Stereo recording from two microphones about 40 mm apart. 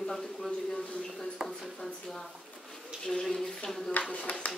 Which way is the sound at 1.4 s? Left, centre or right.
Right.